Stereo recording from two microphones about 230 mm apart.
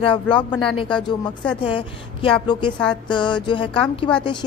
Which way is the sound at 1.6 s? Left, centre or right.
Left.